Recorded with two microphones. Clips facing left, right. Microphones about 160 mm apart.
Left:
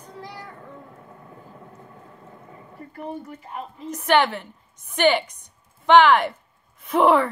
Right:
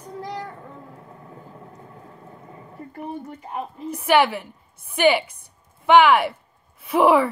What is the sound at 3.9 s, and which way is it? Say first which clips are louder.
A woman's voice: right 1 dB; 10° right (ahead or behind).